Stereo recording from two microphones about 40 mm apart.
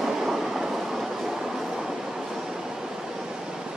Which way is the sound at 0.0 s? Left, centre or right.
Centre.